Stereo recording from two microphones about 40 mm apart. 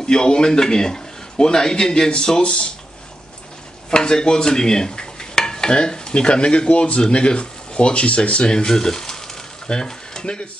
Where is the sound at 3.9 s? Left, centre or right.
Centre.